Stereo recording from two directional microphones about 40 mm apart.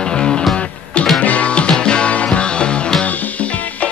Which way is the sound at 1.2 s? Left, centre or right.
Left.